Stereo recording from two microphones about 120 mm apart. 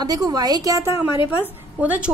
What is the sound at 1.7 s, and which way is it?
Speech, 10° right (ahead or behind).